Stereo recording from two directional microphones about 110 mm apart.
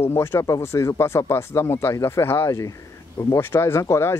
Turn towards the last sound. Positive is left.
turn(degrees=25)  # may be behind; listen again after turning